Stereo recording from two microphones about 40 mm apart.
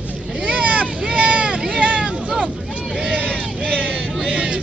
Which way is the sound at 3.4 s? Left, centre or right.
Right.